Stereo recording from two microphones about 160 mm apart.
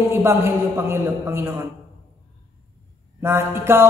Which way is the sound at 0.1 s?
15° right (ahead or behind).